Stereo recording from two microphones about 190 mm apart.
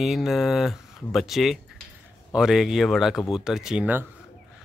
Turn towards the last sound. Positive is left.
turn(degrees=-10)  # may be behind; listen again after turning